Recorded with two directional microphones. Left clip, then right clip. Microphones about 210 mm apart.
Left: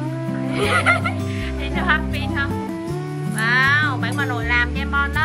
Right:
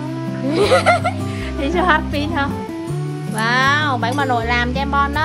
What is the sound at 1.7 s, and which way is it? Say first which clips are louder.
Music: right 4 dB; 35° right (ahead or behind).